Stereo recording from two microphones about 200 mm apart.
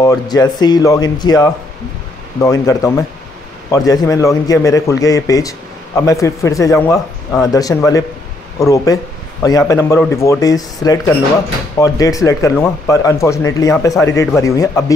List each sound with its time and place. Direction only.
0.0 s speech: 20° left (ahead or behind)